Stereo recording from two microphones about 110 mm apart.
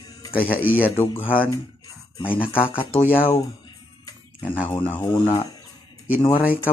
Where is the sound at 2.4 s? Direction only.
55° left (ahead or behind).